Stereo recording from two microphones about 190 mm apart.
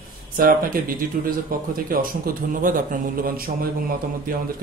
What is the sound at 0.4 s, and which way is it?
Speech, 50° right (ahead or behind).